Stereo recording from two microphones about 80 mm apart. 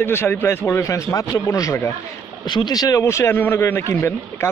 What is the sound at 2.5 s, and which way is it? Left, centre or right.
Speech, left.